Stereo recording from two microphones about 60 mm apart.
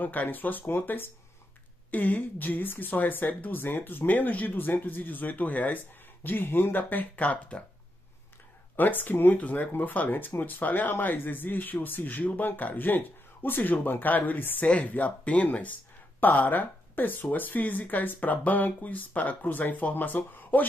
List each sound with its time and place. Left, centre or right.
0.0 s speech: left
8.7 s speech: left